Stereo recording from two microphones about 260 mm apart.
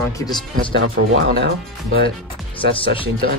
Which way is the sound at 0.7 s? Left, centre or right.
Right.